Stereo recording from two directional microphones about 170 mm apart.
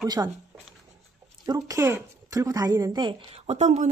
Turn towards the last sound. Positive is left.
turn(degrees=-45)  # may be behind; listen again after turning